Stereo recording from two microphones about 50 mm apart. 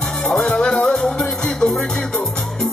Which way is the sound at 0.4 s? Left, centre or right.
Left.